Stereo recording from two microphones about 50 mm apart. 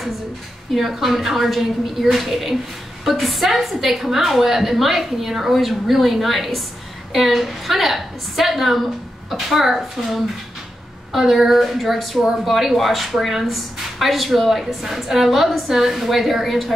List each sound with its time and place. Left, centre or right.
0.7 s a woman's voice: centre